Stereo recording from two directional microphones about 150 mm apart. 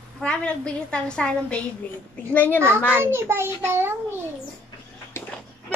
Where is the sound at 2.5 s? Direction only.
15° right (ahead or behind).